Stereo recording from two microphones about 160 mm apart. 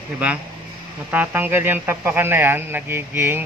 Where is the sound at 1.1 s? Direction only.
10° right (ahead or behind).